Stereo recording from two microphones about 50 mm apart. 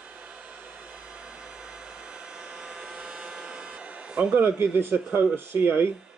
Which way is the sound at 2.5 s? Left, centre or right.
Centre.